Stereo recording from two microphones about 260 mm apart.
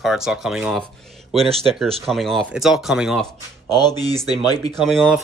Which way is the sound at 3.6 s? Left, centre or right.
Centre.